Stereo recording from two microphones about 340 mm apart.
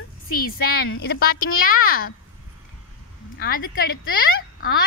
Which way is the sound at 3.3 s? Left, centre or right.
Left.